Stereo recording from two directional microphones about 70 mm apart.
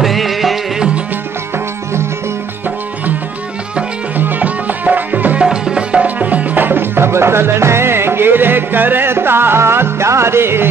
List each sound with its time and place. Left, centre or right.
0.0 s music: centre
4.2 s music: right